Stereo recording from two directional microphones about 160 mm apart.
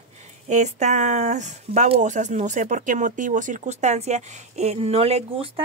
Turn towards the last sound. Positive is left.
turn(degrees=-40)  # may be behind; listen again after turning